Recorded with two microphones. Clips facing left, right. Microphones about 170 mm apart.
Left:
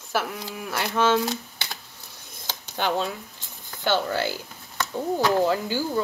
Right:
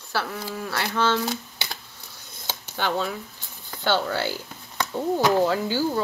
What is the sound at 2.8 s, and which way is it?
Speech, 15° left (ahead or behind).